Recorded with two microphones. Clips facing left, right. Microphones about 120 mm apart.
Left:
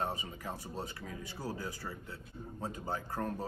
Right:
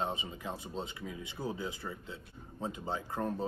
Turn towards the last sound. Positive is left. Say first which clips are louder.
# right 2 dB
turn(degrees=-20)  # may be behind; listen again after turning